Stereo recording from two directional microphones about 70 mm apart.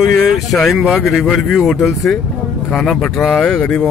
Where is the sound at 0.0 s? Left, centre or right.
Centre.